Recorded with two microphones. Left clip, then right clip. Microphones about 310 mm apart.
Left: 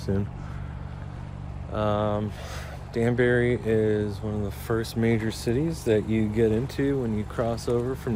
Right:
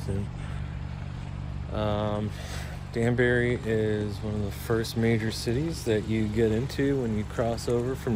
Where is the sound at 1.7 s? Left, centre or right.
Centre.